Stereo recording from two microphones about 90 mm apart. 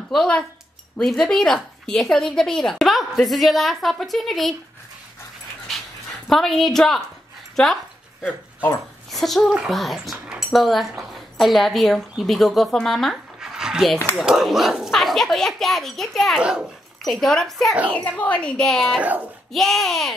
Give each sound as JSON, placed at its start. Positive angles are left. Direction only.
{"t": 0.1, "sound": "a woman's voice", "side_deg": 5}
{"t": 6.2, "sound": "a woman's voice", "side_deg": 0}
{"t": 8.2, "sound": "speech", "side_deg": 20}
{"t": 9.1, "sound": "a woman's voice", "side_deg": 0}
{"t": 10.2, "sound": "cutlery", "side_deg": -10}
{"t": 10.5, "sound": "a woman's voice", "side_deg": 0}
{"t": 16.3, "sound": "a child's voice", "side_deg": -10}
{"t": 17.0, "sound": "a woman's voice", "side_deg": 5}
{"t": 17.9, "sound": "a woman's voice", "side_deg": 15}
{"t": 18.9, "sound": "a child's voice", "side_deg": -15}
{"t": 19.5, "sound": "a woman's voice", "side_deg": 5}